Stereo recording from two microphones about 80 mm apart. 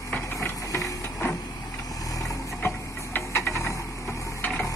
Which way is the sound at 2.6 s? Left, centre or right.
Left.